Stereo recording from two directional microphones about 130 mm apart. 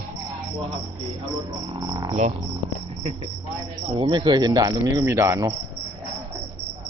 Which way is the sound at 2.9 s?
45° right (ahead or behind).